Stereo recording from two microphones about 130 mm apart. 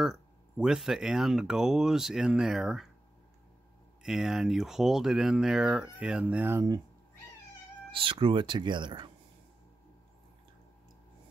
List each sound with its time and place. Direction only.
0.0 s speech: 5° right (ahead or behind)
4.0 s speech: 5° right (ahead or behind)
7.9 s speech: 40° right (ahead or behind)